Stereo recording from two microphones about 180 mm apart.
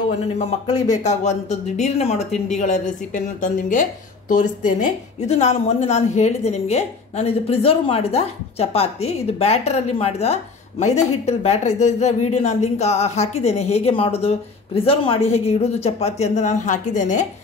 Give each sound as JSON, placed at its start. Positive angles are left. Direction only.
{"t": 0.4, "sound": "a woman's voice", "side_deg": 40}